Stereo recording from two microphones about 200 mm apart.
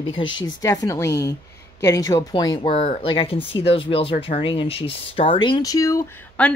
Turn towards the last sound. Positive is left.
turn(degrees=10)  # may be behind; listen again after turning